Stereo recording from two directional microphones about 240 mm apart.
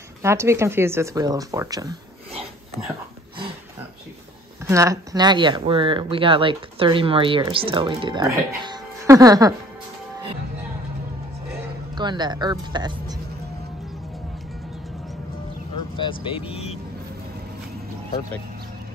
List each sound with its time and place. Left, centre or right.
0.2 s speech: centre
4.6 s speech: centre
11.9 s speech: centre
16.0 s speech: left